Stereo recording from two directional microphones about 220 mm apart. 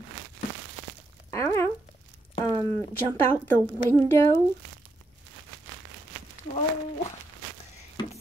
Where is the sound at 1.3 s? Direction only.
10° left (ahead or behind).